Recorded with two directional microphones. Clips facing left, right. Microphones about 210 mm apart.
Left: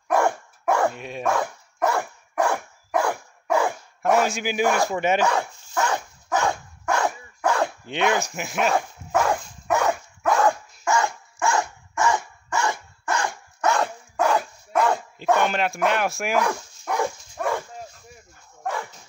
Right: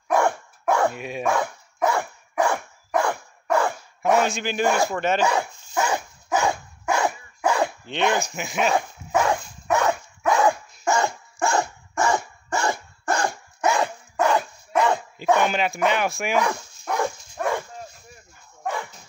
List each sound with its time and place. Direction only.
0.1 s dog: 5° left (ahead or behind)
5.8 s dog: 15° right (ahead or behind)
10.8 s dog: 35° right (ahead or behind)
13.6 s dog: 5° right (ahead or behind)